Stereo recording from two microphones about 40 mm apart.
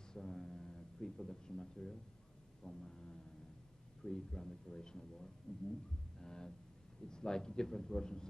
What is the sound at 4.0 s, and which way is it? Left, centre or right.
A man's voice, centre.